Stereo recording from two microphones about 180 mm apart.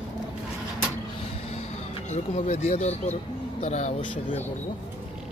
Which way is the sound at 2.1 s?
40° left (ahead or behind).